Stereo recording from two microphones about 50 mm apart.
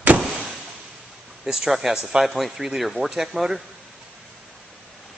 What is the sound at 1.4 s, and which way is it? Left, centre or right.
Speech, centre.